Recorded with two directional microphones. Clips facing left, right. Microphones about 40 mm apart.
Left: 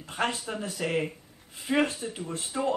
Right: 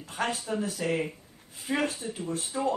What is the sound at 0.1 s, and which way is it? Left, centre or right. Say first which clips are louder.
Speech: even; left.